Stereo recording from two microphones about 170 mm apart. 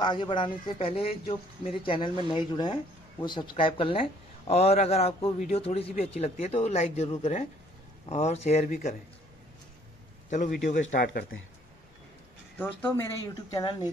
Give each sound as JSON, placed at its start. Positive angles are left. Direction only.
{"t": 0.0, "sound": "speech", "side_deg": 30}
{"t": 10.3, "sound": "speech", "side_deg": 50}
{"t": 12.5, "sound": "speech", "side_deg": 15}
{"t": 13.5, "sound": "speech", "side_deg": 25}